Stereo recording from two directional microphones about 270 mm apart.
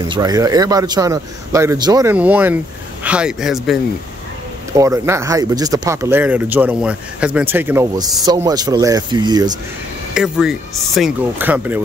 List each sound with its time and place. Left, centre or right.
0.1 s speech: centre
4.7 s speech: centre
10.1 s speech: centre